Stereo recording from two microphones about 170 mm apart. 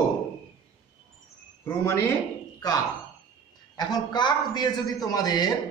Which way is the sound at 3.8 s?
25° left (ahead or behind).